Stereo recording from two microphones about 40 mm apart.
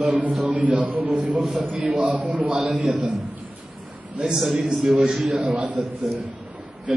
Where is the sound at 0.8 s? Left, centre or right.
Centre.